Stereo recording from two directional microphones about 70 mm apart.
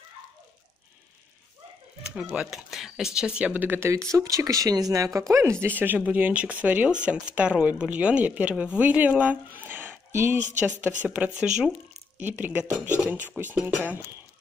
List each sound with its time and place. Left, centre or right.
2.0 s speech: centre; by 3.9 s right
3.9 s speech: right
5.3 s speech: right
5.7 s speech: right
12.2 s speech: right